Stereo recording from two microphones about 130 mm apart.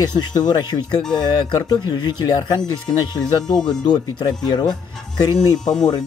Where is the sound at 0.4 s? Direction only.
35° left (ahead or behind).